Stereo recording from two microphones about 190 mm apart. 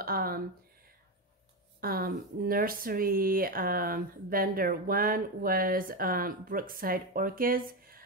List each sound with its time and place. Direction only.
0.0 s speech: 50° right (ahead or behind)
1.8 s speech: 50° right (ahead or behind)